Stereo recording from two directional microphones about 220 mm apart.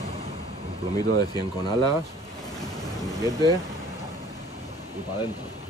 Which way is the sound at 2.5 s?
15° left (ahead or behind).